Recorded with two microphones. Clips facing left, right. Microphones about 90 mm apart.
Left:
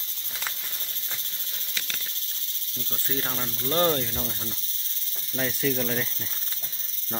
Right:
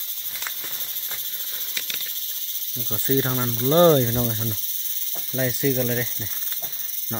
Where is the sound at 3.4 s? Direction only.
30° right (ahead or behind).